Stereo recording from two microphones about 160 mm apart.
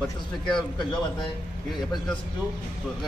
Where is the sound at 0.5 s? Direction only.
30° left (ahead or behind).